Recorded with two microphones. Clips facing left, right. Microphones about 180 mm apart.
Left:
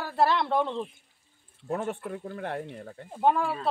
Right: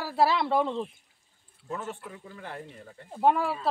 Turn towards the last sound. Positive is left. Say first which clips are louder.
# even
turn(degrees=0)  # may be behind; listen again after turning